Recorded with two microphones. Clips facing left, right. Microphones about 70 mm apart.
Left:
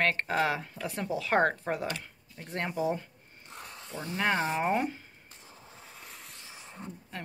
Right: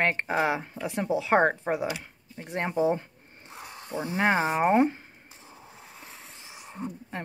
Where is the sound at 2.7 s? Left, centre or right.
Right.